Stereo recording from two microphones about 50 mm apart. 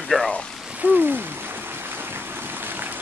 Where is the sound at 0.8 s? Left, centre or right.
Right.